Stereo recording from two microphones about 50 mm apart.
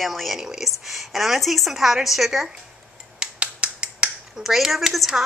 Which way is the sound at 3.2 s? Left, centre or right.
Centre.